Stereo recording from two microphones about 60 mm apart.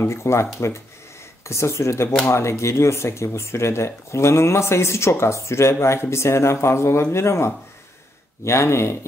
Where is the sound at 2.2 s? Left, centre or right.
Left.